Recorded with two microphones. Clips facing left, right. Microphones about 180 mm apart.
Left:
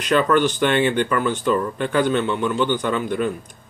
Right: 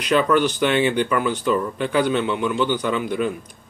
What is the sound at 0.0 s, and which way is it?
Speech, 45° left (ahead or behind).